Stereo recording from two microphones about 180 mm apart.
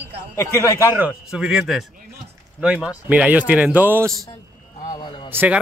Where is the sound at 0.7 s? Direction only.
10° right (ahead or behind).